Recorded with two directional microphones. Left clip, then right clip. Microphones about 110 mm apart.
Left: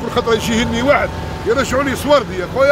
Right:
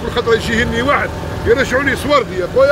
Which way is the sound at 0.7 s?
90° left.